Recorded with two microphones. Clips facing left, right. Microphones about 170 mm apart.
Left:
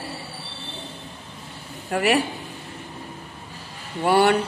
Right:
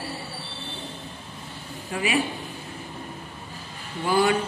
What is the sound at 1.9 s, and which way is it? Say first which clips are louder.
Speech: left 5 dB; 70° left (ahead or behind).